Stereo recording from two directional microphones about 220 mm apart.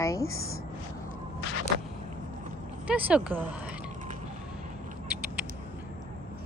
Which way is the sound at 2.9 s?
5° right (ahead or behind).